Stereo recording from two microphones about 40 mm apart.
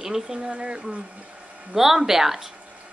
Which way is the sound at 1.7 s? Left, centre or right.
Centre.